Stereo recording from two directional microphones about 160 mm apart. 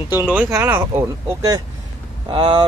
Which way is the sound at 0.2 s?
10° right (ahead or behind).